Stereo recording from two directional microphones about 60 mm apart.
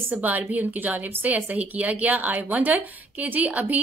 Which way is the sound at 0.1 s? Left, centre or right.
Right.